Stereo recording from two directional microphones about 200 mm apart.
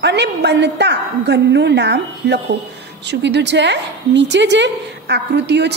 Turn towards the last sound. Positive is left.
turn(degrees=-60)  # may be behind; listen again after turning